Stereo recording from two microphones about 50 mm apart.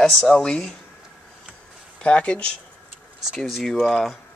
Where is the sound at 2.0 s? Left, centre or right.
Left.